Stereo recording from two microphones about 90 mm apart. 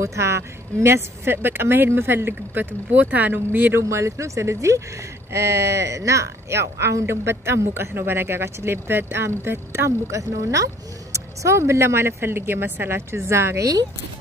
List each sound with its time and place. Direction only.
0.0 s speech: 30° right (ahead or behind)